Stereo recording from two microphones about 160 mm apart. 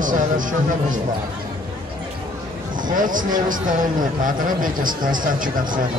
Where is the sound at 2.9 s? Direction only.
55° right (ahead or behind).